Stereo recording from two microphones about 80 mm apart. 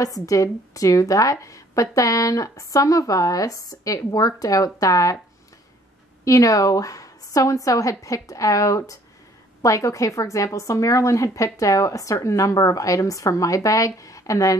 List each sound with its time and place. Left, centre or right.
0.0 s speech: left
6.2 s speech: left